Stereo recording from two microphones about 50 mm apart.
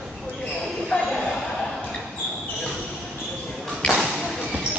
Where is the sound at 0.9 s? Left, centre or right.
Left.